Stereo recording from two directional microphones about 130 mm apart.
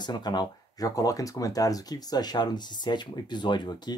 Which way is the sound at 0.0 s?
35° left (ahead or behind).